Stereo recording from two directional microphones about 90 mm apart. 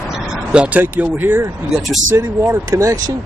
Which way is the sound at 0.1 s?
10° right (ahead or behind).